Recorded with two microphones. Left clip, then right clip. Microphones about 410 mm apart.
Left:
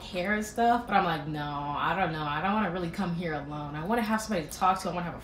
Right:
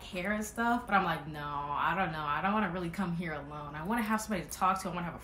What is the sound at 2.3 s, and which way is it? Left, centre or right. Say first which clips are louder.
Speech: left 2 dB; centre.